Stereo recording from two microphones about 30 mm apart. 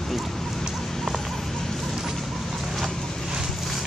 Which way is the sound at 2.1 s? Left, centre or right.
Centre.